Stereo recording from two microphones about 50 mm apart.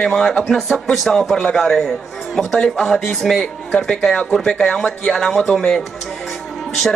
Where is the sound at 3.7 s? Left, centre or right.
Centre.